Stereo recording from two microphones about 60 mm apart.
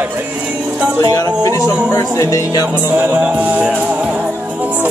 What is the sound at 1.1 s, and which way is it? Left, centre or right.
Speech, left.